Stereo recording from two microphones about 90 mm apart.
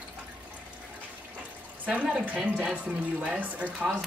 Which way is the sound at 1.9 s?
10° right (ahead or behind).